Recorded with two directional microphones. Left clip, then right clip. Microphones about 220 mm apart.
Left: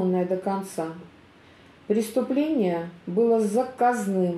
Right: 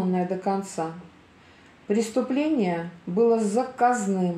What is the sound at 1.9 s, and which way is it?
Speech, 55° right (ahead or behind).